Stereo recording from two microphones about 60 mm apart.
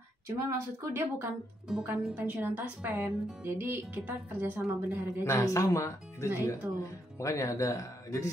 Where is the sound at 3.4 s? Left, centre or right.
Right.